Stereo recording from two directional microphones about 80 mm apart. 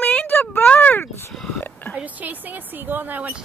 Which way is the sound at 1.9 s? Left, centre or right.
Centre.